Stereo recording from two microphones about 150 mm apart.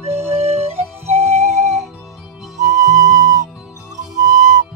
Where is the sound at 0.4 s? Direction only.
45° right (ahead or behind).